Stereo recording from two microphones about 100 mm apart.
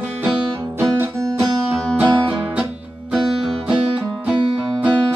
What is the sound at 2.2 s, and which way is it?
Music, 20° right (ahead or behind).